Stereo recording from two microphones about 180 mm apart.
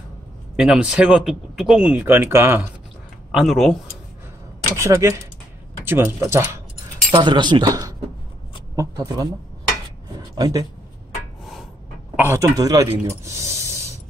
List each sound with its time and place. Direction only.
0.6 s speech: 5° right (ahead or behind)
3.3 s speech: centre (ahead or behind)
4.7 s speech: 15° right (ahead or behind)
7.1 s speech: 25° right (ahead or behind)
10.3 s speech: 20° right (ahead or behind)
12.2 s speech: 15° right (ahead or behind)